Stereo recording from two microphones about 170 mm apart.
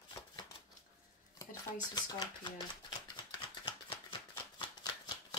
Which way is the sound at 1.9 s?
25° left (ahead or behind).